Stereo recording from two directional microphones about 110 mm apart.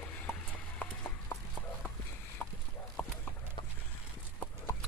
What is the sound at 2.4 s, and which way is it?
Clip-clop, 15° left (ahead or behind).